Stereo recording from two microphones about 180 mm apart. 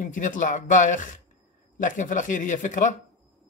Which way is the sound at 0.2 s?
45° left (ahead or behind).